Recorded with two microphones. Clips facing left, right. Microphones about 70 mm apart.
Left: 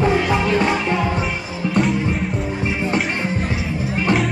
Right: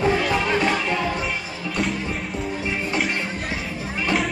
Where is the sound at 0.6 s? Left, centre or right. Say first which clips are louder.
Left 3 dB; centre.